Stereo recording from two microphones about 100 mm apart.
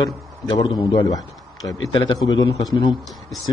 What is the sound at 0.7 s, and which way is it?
A man's voice, 45° left (ahead or behind).